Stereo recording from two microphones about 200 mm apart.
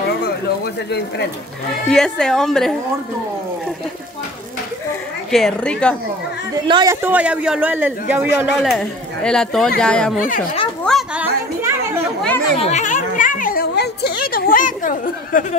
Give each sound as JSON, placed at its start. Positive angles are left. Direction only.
{"t": 0.8, "sound": "speech", "side_deg": 55}
{"t": 1.9, "sound": "speech", "side_deg": 5}
{"t": 5.3, "sound": "speech", "side_deg": 5}
{"t": 6.5, "sound": "a man's voice", "side_deg": -20}
{"t": 8.5, "sound": "speech", "side_deg": 0}
{"t": 10.2, "sound": "speech", "side_deg": 40}
{"t": 10.8, "sound": "a sound", "side_deg": 0}
{"t": 12.5, "sound": "a sound", "side_deg": 35}